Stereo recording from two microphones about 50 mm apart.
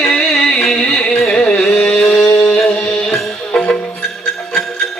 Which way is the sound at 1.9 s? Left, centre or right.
Centre.